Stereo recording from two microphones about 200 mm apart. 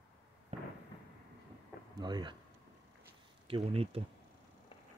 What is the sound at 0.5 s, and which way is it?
Fireworks, 35° right (ahead or behind).